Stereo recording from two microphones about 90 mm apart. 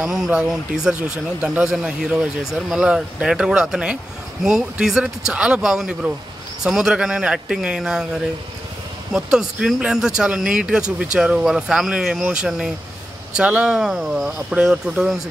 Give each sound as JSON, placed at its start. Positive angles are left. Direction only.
{"t": 0.3, "sound": "speech", "side_deg": -5}